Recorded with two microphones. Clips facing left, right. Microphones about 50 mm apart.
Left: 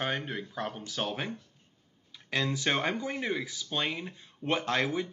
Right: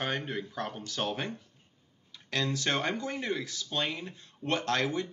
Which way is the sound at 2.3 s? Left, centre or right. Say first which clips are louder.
Left 1 dB; centre.